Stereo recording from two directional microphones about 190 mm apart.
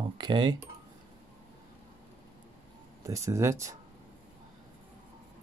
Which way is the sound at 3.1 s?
15° right (ahead or behind).